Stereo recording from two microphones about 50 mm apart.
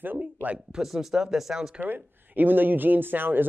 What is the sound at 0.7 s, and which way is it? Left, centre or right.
Speech, centre.